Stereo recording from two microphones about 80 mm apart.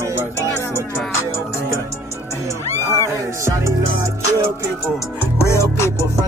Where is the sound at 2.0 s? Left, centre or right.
Right.